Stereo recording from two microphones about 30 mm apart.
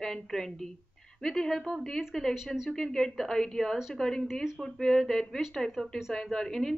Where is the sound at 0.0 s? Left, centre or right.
Centre.